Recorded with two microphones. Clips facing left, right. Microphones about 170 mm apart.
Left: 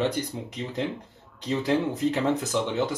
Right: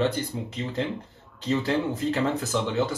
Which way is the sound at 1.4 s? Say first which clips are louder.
Even; 15° left (ahead or behind).